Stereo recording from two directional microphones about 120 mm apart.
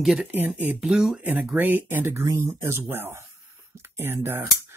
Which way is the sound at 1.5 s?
15° right (ahead or behind).